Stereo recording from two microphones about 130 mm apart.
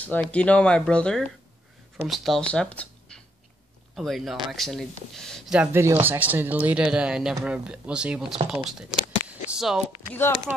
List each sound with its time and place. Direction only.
0.0 s speech: 10° left (ahead or behind)
5.5 s speech: 10° right (ahead or behind)
5.8 s speech: 20° right (ahead or behind)
8.6 s a sound: 5° right (ahead or behind)